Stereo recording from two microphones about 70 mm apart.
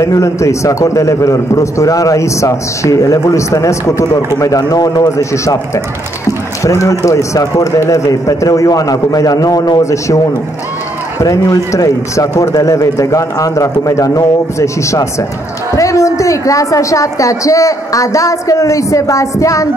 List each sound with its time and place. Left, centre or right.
0.0 s a man's voice: left
5.3 s a man's voice: left
6.6 s a man's voice: left
11.2 s a man's voice: left
15.7 s a sound: left
16.2 s a man's voice: left